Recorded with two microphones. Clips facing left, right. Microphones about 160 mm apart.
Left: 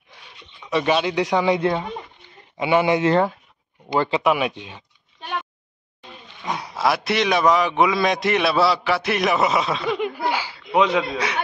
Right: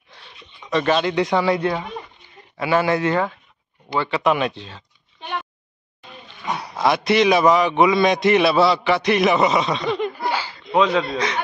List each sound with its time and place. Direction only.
0.7 s a man's voice: 10° left (ahead or behind); by 3.3 s 25° left (ahead or behind)
4.2 s speech: 10° left (ahead or behind)
6.7 s a man's voice: 5° left (ahead or behind)